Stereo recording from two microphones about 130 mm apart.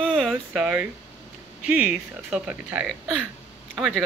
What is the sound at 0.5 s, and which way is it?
Speech, 5° right (ahead or behind).